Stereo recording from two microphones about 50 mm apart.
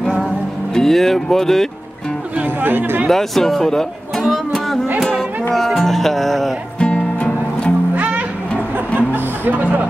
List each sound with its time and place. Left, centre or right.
0.7 s speech: centre
2.6 s speech: right
3.1 s speech: centre
6.8 s music: left
7.9 s music: right
8.7 s speech: right